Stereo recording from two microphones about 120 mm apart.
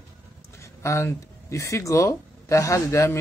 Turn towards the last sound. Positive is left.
turn(degrees=25)  # may be behind; listen again after turning